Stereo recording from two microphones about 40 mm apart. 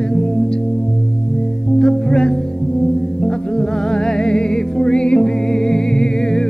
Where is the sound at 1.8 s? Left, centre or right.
Centre.